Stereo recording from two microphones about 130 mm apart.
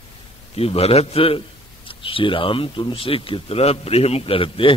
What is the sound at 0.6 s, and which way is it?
A man's voice, 50° left (ahead or behind).